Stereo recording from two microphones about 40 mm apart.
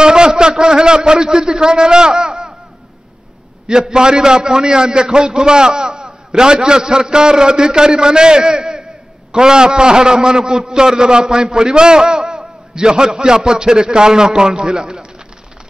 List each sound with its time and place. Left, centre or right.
0.0 s a man's voice: right
3.9 s a man's voice: centre